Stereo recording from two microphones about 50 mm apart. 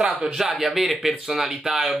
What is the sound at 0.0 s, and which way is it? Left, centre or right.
Speech, centre.